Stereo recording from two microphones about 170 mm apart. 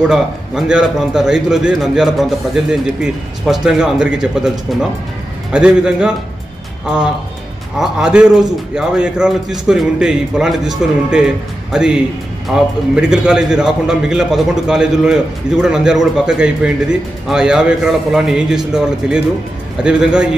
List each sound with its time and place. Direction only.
0.0 s a man's voice: 5° right (ahead or behind)
7.8 s a man's voice: 5° right (ahead or behind)